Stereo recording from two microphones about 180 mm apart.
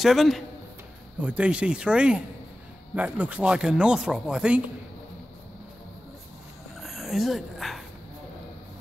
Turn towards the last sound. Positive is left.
turn(degrees=0)  # may be behind; listen again after turning